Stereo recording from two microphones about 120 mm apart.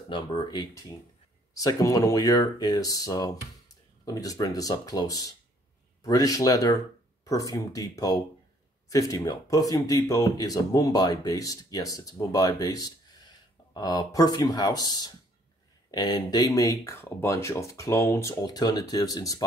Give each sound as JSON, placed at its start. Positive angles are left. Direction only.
{"t": 0.1, "sound": "speech", "side_deg": 40}
{"t": 16.8, "sound": "speech", "side_deg": 20}
{"t": 18.3, "sound": "speech", "side_deg": 35}